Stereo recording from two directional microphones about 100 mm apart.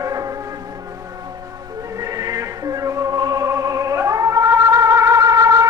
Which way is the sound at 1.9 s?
35° right (ahead or behind).